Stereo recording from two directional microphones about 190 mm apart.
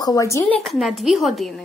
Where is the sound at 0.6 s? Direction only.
Centre (ahead or behind).